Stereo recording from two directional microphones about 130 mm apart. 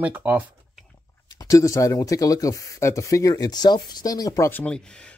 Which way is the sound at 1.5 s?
25° left (ahead or behind).